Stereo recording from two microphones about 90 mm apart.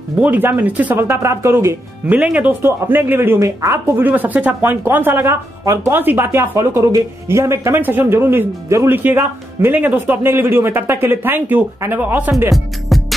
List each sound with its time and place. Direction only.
0.2 s speech: 20° right (ahead or behind)
2.0 s speech: 15° right (ahead or behind)
3.3 s speech: 35° right (ahead or behind)
12.9 s music: centre (ahead or behind)